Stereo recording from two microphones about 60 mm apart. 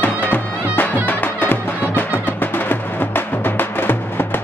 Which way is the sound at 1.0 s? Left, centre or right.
Left.